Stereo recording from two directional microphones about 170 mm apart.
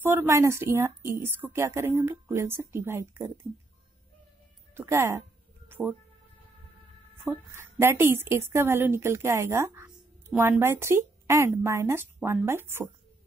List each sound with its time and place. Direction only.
0.0 s a woman's voice: 15° right (ahead or behind)
4.7 s a woman's voice: 15° right (ahead or behind)
5.7 s music: 10° right (ahead or behind)
7.2 s a woman's voice: 15° right (ahead or behind)